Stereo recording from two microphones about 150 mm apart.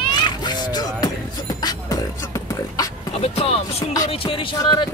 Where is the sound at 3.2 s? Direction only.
40° left (ahead or behind).